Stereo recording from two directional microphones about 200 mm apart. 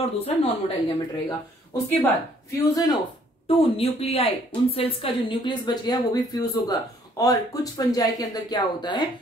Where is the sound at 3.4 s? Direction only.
30° left (ahead or behind).